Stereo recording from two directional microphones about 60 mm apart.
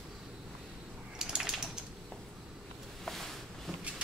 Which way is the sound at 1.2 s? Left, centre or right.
Centre.